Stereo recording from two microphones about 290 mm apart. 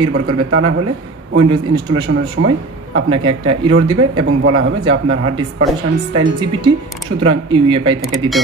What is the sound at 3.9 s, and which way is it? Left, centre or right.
Speech, right.